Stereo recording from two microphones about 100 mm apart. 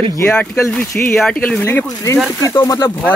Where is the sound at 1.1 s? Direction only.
10° left (ahead or behind).